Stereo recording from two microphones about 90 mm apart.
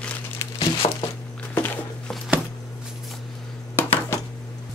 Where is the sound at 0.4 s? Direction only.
90° left.